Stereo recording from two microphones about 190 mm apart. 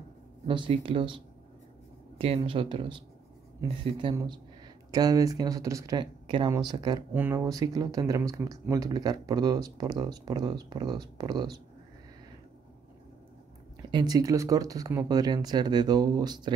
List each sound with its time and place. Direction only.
0.5 s speech: 25° right (ahead or behind)
13.8 s speech: 20° right (ahead or behind)